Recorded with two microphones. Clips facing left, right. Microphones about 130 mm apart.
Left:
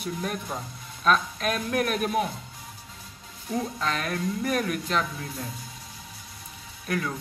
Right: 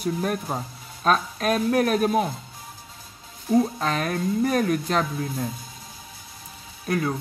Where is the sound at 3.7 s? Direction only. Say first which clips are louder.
Right 4 dB; 40° right (ahead or behind).